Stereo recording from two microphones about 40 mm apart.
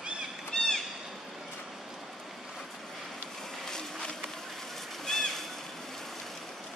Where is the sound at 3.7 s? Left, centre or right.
Centre.